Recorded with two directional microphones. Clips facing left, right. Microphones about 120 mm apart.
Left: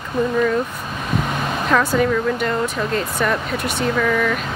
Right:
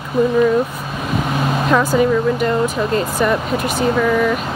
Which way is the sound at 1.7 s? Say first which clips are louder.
Right 2 dB; 5° right (ahead or behind).